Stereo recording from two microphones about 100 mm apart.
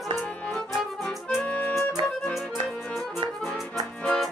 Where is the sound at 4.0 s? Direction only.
5° left (ahead or behind).